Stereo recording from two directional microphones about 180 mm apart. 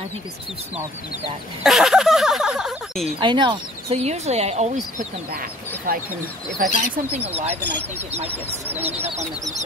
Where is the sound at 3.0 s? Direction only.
25° right (ahead or behind).